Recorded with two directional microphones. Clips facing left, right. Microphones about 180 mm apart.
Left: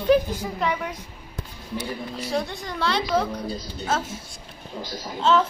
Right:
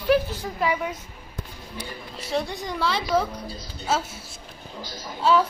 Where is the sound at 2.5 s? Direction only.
15° right (ahead or behind).